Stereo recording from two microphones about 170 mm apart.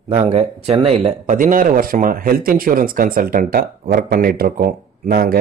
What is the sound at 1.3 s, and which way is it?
Speech, 50° right (ahead or behind).